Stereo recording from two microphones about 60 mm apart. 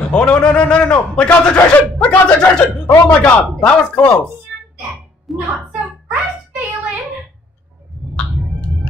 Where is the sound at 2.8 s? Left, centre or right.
Left.